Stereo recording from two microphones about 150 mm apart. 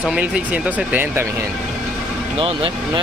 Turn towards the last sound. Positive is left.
turn(degrees=-35)  # may be behind; listen again after turning